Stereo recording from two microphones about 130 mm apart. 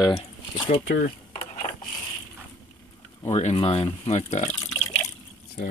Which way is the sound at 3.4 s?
50° left (ahead or behind).